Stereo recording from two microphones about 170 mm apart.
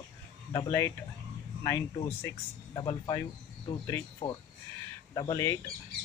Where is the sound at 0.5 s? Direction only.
20° left (ahead or behind).